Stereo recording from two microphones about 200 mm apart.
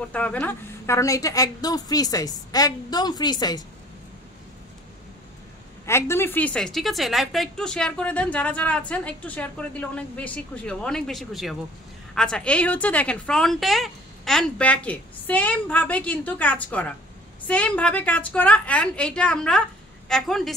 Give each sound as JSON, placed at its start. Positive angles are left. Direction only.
{"t": 0.1, "sound": "a woman's voice", "side_deg": 5}
{"t": 5.9, "sound": "a woman's voice", "side_deg": 15}